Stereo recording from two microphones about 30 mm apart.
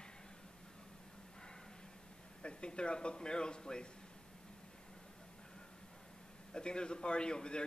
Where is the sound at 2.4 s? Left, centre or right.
Left.